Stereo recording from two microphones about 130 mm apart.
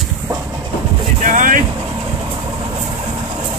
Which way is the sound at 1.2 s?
85° right.